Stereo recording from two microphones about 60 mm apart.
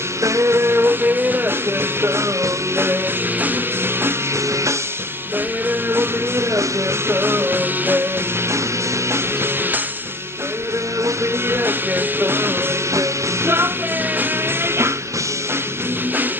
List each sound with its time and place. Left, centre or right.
0.2 s music: right
2.0 s music: right
5.7 s music: right
11.5 s music: right